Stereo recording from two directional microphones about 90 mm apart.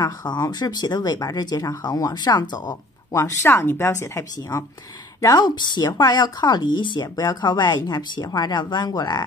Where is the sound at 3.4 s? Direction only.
25° left (ahead or behind).